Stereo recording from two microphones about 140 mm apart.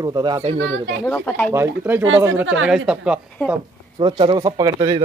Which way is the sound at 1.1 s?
10° left (ahead or behind).